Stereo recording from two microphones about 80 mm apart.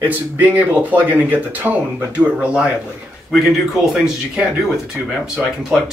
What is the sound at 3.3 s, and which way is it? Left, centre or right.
Speech, centre.